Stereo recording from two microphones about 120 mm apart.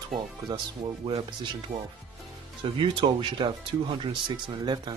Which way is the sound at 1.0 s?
40° right (ahead or behind).